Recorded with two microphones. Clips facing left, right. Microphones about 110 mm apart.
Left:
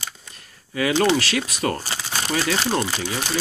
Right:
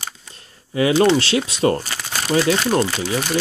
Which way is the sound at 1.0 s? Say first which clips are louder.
Right 3 dB; 25° right (ahead or behind).